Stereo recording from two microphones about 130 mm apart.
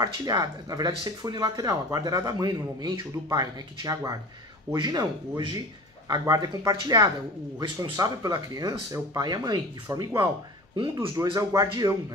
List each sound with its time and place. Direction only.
0.0 s speech: 30° right (ahead or behind)
10.8 s speech: 40° right (ahead or behind)
11.2 s speech: 30° right (ahead or behind)